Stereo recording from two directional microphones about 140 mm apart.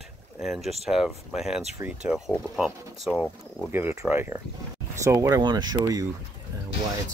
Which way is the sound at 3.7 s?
15° right (ahead or behind).